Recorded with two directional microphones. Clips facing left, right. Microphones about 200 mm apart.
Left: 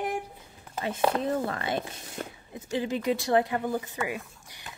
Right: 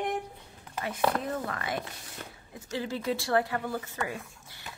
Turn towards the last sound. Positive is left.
turn(degrees=15)  # may be behind; listen again after turning